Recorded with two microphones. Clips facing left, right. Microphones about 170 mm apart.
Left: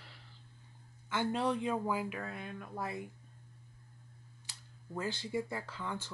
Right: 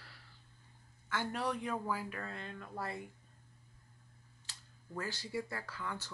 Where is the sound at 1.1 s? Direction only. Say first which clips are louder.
Left 4 dB; 25° left (ahead or behind).